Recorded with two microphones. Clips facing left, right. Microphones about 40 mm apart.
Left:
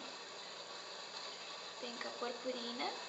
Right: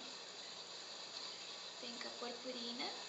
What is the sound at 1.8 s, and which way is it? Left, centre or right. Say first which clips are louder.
Speech: left 5 dB; centre.